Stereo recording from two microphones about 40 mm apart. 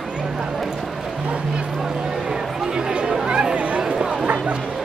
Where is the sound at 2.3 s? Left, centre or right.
Centre.